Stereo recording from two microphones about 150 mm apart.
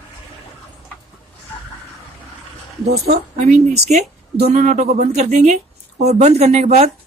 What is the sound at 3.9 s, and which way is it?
A woman's voice, 45° right (ahead or behind).